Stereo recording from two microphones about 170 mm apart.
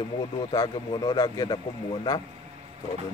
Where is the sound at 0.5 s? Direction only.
25° left (ahead or behind).